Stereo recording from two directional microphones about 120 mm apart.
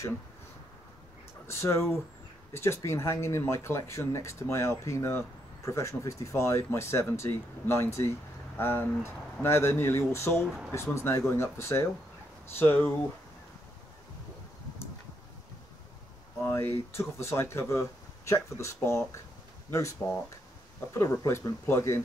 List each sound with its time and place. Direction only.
1.5 s speech: 20° left (ahead or behind)
10.4 s speech: 5° right (ahead or behind)
10.7 s speech: 20° left (ahead or behind)
16.4 s a sound: 20° left (ahead or behind)
16.9 s speech: 20° left (ahead or behind)